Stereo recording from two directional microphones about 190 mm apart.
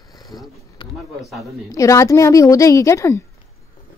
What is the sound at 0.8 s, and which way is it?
Speech, 25° left (ahead or behind).